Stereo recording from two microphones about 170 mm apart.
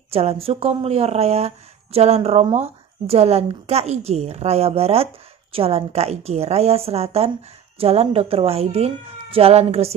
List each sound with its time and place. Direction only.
0.1 s speech: 35° right (ahead or behind)